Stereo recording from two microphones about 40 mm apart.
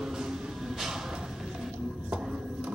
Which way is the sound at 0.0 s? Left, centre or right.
Centre.